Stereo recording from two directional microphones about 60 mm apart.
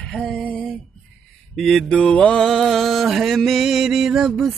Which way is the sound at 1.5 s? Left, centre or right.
Centre.